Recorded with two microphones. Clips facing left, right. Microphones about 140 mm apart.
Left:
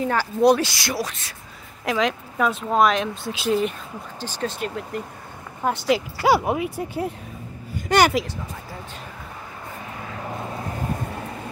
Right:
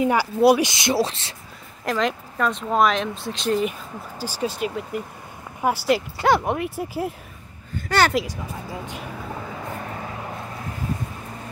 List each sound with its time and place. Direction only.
0.0 s speech: 10° right (ahead or behind)
0.7 s speech: 20° right (ahead or behind)
1.9 s speech: centre (ahead or behind)
4.2 s speech: 10° right (ahead or behind)
7.7 s a sound: 15° left (ahead or behind)